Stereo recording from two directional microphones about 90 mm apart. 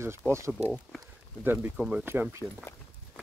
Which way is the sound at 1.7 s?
10° right (ahead or behind).